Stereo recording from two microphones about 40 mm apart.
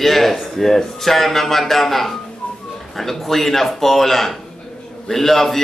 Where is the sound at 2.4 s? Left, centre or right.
Left.